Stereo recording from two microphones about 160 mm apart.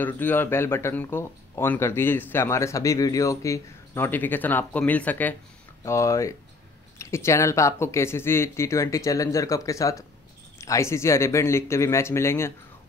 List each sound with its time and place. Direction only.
0.0 s speech: 10° left (ahead or behind)